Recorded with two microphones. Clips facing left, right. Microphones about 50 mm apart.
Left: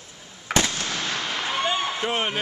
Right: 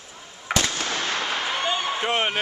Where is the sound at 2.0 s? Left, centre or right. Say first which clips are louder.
Right 2 dB; centre.